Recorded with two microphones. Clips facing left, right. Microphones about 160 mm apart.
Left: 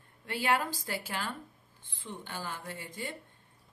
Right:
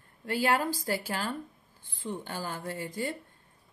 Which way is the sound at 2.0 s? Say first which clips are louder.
Right 5 dB; 40° right (ahead or behind).